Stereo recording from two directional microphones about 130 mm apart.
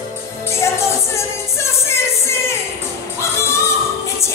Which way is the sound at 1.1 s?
20° left (ahead or behind).